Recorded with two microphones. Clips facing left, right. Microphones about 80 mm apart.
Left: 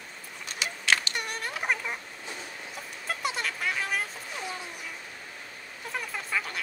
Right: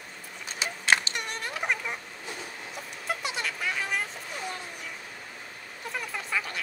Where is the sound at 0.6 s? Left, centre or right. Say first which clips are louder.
Right 2 dB; right.